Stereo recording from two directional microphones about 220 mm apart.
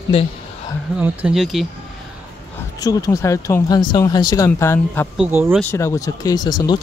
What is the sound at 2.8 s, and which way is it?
Speech, 15° left (ahead or behind).